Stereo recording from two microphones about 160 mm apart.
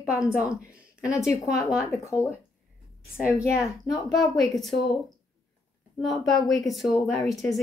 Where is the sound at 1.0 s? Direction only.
5° right (ahead or behind).